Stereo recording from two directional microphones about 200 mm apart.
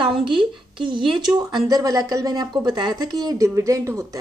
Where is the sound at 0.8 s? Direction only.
25° right (ahead or behind).